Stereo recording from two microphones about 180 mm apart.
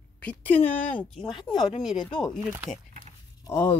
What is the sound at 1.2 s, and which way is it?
Speech, 25° left (ahead or behind).